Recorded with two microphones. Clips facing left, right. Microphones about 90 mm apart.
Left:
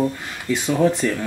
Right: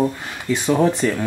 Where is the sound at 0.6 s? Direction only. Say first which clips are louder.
Right 1 dB; 20° right (ahead or behind).